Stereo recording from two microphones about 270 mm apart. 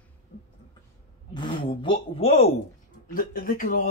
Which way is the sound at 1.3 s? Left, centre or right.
Centre.